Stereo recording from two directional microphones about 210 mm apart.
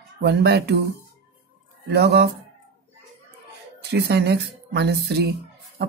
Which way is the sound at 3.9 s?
50° right (ahead or behind).